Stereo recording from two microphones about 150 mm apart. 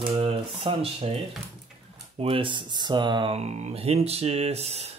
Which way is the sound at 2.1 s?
40° right (ahead or behind).